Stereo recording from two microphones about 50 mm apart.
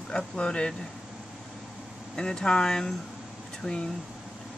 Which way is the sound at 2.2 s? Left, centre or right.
Centre.